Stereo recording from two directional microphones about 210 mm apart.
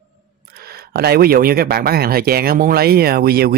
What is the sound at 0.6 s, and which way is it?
Speech, 45° right (ahead or behind).